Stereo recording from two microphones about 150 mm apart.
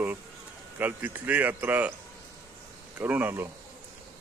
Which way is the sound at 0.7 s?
10° right (ahead or behind).